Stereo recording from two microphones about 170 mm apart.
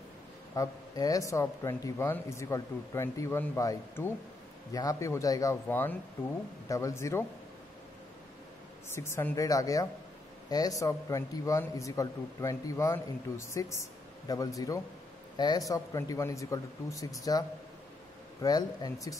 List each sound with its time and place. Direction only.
0.6 s speech: 20° left (ahead or behind)
8.9 s a man's voice: 15° left (ahead or behind)